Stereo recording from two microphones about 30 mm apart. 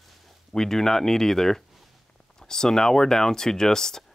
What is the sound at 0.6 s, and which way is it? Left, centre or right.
Speech, centre.